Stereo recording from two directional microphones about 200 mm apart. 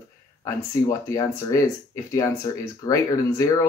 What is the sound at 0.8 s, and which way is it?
Speech, 15° left (ahead or behind).